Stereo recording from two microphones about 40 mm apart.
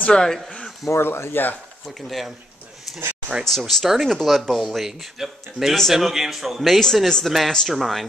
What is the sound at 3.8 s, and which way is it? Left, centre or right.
Speech, centre.